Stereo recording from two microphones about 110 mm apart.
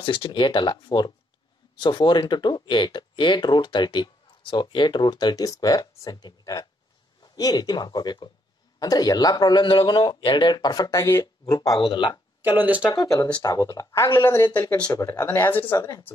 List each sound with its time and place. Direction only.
0.0 s speech: 50° left (ahead or behind); by 11.8 s 35° left (ahead or behind)
11.8 s speech: 50° left (ahead or behind)
12.4 s speech: 15° right (ahead or behind)
12.9 s speech: 35° left (ahead or behind); by 15.8 s 20° left (ahead or behind)